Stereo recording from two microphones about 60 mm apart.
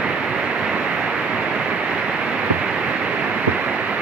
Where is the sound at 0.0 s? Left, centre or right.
Centre.